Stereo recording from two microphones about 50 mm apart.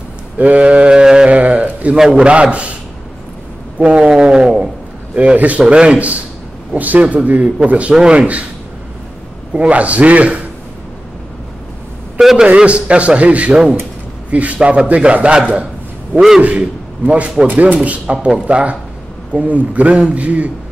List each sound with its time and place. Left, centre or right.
0.4 s a sound: right
2.0 s speech: right
3.7 s speech: right
5.1 s speech: right
7.9 s speech: centre
9.5 s speech: right
12.2 s a man's voice: centre
12.4 s speech: right
16.4 s a man's voice: right